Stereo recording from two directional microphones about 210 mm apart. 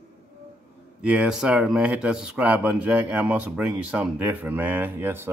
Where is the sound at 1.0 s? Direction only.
5° right (ahead or behind).